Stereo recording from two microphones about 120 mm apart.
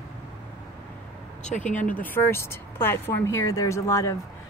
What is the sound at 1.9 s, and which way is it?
Speech, 15° left (ahead or behind).